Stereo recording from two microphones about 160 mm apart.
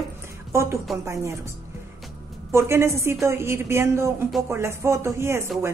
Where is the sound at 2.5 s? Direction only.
15° right (ahead or behind).